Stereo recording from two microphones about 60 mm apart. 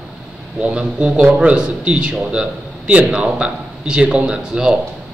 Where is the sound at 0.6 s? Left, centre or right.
Centre.